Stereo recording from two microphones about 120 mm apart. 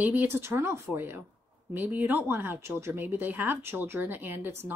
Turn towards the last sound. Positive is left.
turn(degrees=-15)  # may be behind; listen again after turning